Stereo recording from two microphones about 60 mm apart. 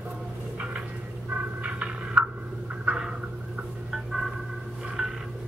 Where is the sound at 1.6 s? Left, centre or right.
Right.